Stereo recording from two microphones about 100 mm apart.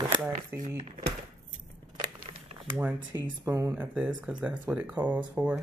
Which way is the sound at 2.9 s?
50° right (ahead or behind).